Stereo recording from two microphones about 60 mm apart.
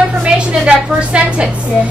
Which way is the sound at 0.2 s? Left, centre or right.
Centre.